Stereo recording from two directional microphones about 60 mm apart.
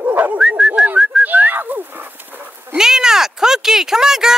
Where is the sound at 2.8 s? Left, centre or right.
Centre.